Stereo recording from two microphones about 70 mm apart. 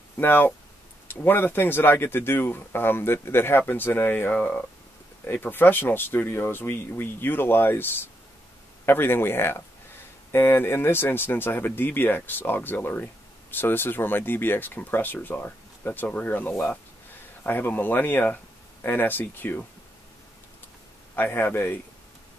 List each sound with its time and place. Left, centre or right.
0.2 s speech: left
21.2 s speech: left